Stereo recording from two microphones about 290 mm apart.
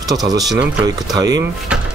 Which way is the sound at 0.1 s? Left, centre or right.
Centre.